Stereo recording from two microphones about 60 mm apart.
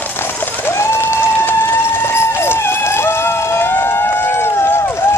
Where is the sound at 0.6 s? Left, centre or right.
Left.